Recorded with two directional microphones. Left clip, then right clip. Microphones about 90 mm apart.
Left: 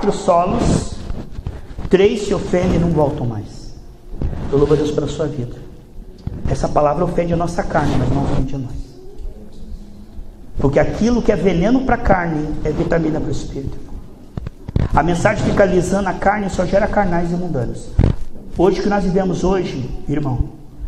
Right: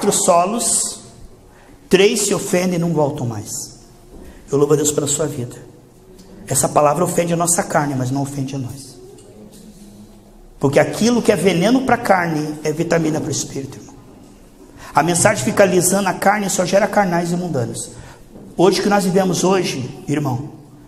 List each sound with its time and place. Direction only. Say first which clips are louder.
0.0 s a woman's voice: right 1 dB; 20° right (ahead or behind)
1.9 s a woman's voice: even; 20° right (ahead or behind)
4.6 s a woman's voice: even; 25° right (ahead or behind)
10.6 s a woman's voice: right 1 dB; 20° right (ahead or behind)
15.0 s a woman's voice: right 1 dB; 20° right (ahead or behind)